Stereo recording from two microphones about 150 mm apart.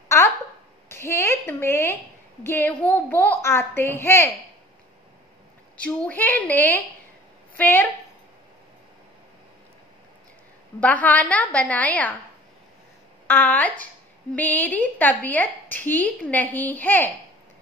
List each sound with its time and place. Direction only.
0.1 s a sound: 15° left (ahead or behind)
0.8 s a child's voice: 15° left (ahead or behind)
5.8 s a woman's voice: 10° left (ahead or behind)
10.8 s a woman's voice: 10° left (ahead or behind)
13.3 s a woman's voice: 10° left (ahead or behind)